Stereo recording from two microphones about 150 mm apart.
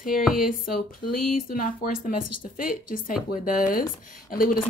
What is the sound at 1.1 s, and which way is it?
A woman's voice, 70° left (ahead or behind).